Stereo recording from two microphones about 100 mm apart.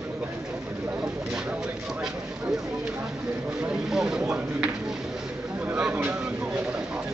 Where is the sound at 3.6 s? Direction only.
5° right (ahead or behind).